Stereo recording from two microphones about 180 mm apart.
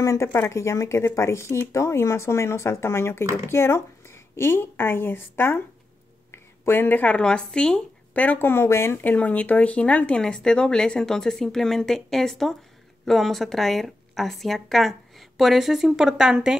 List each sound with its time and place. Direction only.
0.0 s a woman's voice: 15° left (ahead or behind); by 16.5 s 5° right (ahead or behind)